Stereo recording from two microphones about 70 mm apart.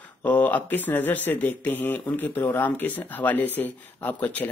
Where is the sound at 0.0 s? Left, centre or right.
Left.